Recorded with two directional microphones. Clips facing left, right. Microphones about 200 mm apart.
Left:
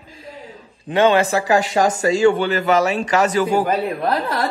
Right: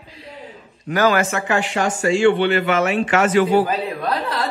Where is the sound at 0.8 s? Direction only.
30° left (ahead or behind); by 3.9 s 50° left (ahead or behind).